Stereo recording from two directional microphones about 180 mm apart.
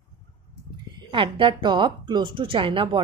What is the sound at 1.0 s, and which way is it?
A woman's voice, 25° right (ahead or behind).